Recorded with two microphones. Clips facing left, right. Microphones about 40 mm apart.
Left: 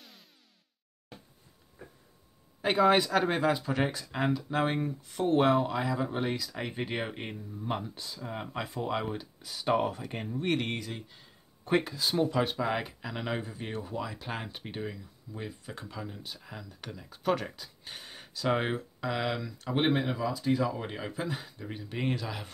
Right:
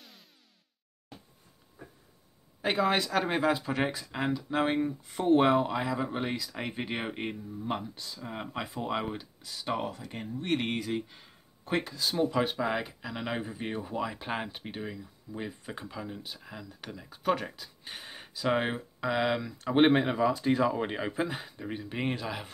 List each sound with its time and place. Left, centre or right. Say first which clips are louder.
0.0 s music: even; centre
2.6 s speech: left 3 dB; centre
5.0 s speech: right 1 dB; centre
8.2 s speech: even; centre
9.4 s speech: left 6 dB; centre
10.0 s speech: left 2 dB; left
10.5 s speech: right 4 dB; centre
11.6 s speech: left 3 dB; centre
12.4 s speech: even; centre
14.6 s speech: even; centre
15.3 s speech: right 2 dB; centre
19.8 s speech: right 5 dB; right; by 22.5 s centre